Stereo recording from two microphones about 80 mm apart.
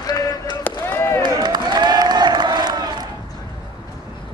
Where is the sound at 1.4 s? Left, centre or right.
Right.